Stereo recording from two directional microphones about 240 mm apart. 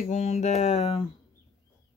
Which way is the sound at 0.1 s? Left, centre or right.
Left.